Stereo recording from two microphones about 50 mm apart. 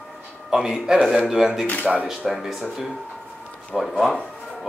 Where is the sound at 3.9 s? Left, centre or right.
Centre.